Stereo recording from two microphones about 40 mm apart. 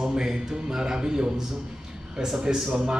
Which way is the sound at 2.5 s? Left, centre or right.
Right.